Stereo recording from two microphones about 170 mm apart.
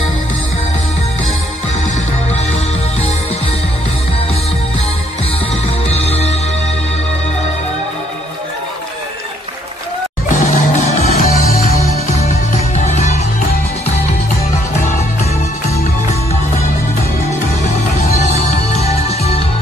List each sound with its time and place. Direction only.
5.9 s music: 35° left (ahead or behind)
10.2 s music: 50° left (ahead or behind)
18.3 s music: 40° left (ahead or behind)